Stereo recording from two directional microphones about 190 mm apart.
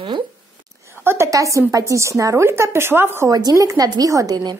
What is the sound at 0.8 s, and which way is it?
A woman's voice, 15° right (ahead or behind).